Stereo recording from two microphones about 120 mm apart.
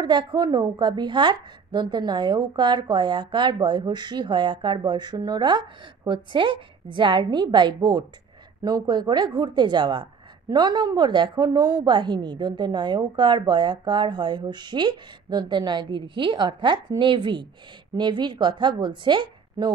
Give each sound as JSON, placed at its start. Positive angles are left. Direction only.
{"t": 0.0, "sound": "a woman's voice", "side_deg": -35}